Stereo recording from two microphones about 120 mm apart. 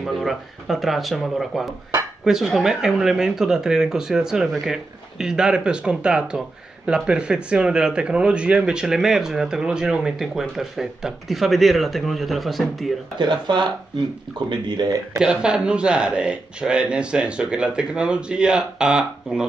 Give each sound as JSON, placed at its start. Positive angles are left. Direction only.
{"t": 0.0, "sound": "speech", "side_deg": 0}
{"t": 13.2, "sound": "speech", "side_deg": -40}
{"t": 15.1, "sound": "speech", "side_deg": -5}